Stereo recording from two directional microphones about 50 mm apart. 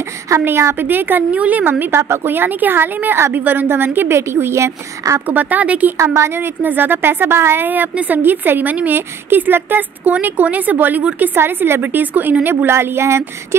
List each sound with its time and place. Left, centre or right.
0.5 s speech: right
0.7 s speech: right
1.3 s a woman's voice: right
1.6 s a woman's voice: right
4.3 s speech: right
5.2 s speech: right
6.0 s a woman's voice: right
6.6 s a woman's voice: right
7.6 s a woman's voice: right
8.2 s speech: right
11.3 s speech: right
12.4 s speech: right